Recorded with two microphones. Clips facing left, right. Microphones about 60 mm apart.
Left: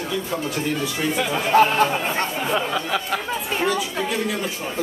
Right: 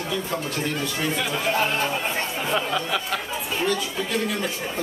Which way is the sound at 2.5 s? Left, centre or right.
Centre.